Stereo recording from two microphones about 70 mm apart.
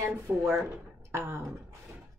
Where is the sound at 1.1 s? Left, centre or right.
Right.